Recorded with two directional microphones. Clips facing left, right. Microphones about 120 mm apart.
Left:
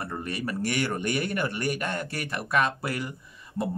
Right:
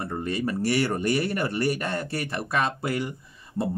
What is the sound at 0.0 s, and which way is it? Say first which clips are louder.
Speech: right 4 dB; 25° right (ahead or behind).